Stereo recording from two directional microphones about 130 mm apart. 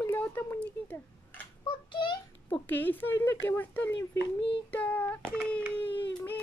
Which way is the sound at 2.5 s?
15° left (ahead or behind).